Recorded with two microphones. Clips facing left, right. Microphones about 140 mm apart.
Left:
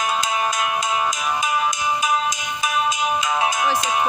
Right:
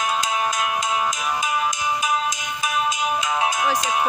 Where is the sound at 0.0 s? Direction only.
90° left.